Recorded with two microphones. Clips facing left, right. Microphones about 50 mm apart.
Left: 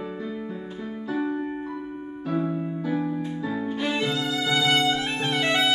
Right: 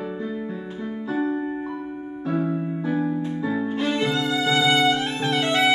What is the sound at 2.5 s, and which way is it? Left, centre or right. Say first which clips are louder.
Music: right 2 dB; centre.